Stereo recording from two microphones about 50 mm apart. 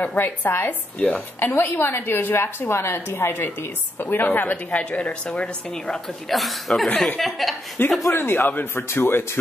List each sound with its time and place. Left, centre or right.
0.0 s a woman's voice: left
0.5 s a woman's voice: left
0.9 s a woman's voice: left
1.6 s a woman's voice: left
4.0 s a woman's voice: left
4.7 s a woman's voice: left
6.2 s speech: centre
7.8 s a woman's voice: left
8.9 s speech: left